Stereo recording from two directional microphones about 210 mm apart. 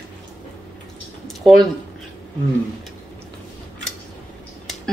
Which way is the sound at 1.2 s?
Centre (ahead or behind).